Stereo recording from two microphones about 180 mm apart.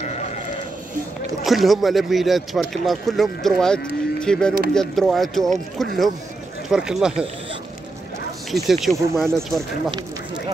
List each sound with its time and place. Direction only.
0.0 s sheep: 40° left (ahead or behind)
1.4 s speech: centre (ahead or behind)
8.6 s speech: centre (ahead or behind)
8.9 s speech: 15° right (ahead or behind)